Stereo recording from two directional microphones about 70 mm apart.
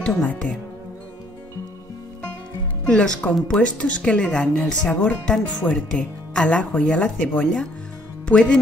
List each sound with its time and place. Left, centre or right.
0.0 s speech: centre
2.9 s speech: centre